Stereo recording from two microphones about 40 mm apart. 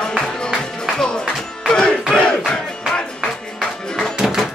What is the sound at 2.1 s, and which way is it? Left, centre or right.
Crowd, left.